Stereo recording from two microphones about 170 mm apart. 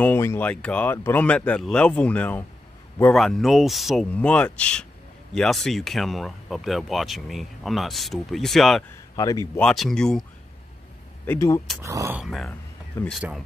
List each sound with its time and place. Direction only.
0.0 s speech: 15° left (ahead or behind)
9.1 s speech: 20° left (ahead or behind)
9.6 s speech: 5° left (ahead or behind)
11.2 s speech: 20° left (ahead or behind)
11.8 s speech: 15° right (ahead or behind)
12.2 s speech: centre (ahead or behind)
13.0 s speech: 15° left (ahead or behind)